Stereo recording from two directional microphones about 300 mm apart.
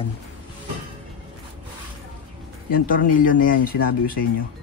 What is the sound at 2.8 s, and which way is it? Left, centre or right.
Speech, left.